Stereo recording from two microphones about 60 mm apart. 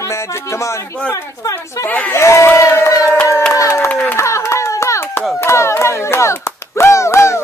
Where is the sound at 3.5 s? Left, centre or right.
Left.